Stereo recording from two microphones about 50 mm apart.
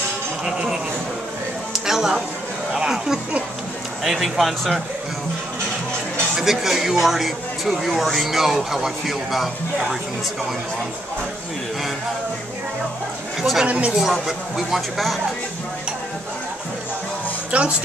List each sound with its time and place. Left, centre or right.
0.5 s speech: centre
1.7 s music: centre
2.7 s speech: centre
6.3 s speech: centre
13.7 s speech: right
13.9 s speech: centre
17.5 s speech: right